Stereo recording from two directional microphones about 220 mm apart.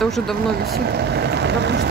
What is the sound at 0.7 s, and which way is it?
Speech, 50° right (ahead or behind).